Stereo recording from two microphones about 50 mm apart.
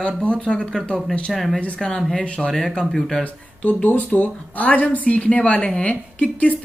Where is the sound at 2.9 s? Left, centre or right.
Centre.